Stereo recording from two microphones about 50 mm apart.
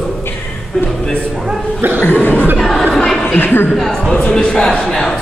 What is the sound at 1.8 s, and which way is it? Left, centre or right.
Cough, right.